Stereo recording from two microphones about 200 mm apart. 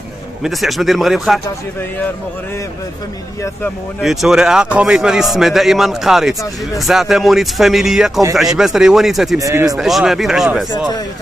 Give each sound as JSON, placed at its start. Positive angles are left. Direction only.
{"t": 0.4, "sound": "a man's voice", "side_deg": 0}
{"t": 4.0, "sound": "a man's voice", "side_deg": 0}
{"t": 9.4, "sound": "speech", "side_deg": -15}
{"t": 9.8, "sound": "a man's voice", "side_deg": 0}